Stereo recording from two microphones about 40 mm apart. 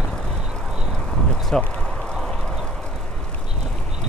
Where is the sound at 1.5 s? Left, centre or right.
Centre.